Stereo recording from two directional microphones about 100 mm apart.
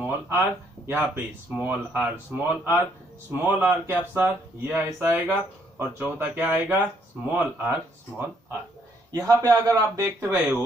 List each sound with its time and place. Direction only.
0.0 s a sound: 20° right (ahead or behind)
0.8 s speech: 25° right (ahead or behind)
1.1 s speech: 10° right (ahead or behind)
9.2 s speech: 35° right (ahead or behind)